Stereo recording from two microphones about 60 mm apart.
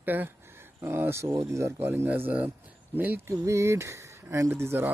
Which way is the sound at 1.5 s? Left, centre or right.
Right.